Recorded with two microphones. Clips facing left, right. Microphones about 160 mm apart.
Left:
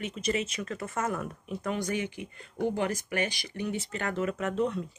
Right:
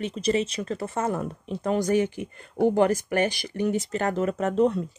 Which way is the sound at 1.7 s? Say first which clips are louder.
Right 12 dB; 40° right (ahead or behind).